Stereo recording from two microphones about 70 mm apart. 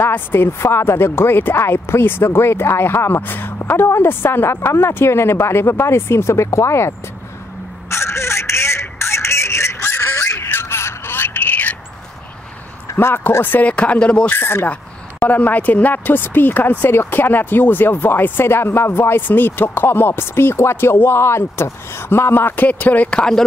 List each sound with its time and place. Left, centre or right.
0.0 s speech: left
7.9 s telephone: left
12.9 s speech: left; by 14.3 s centre
14.3 s speech: left
14.7 s speech: left
22.7 s speech: left